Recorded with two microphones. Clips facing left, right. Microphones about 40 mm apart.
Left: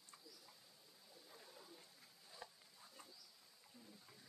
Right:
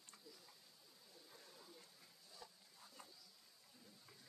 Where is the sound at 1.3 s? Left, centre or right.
Centre.